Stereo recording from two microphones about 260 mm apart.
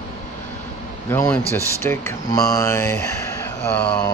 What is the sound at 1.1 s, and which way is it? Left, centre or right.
Speech, centre.